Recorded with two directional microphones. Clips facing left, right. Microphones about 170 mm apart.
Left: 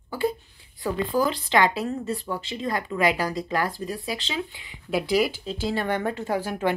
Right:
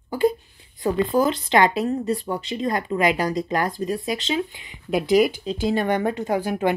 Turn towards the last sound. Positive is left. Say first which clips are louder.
# right 3 dB
turn(degrees=-15)  # may be behind; listen again after turning